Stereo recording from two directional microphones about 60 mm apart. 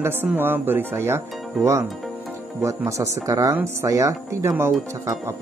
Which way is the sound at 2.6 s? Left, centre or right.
Right.